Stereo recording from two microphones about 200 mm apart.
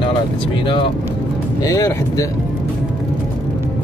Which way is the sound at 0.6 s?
25° left (ahead or behind).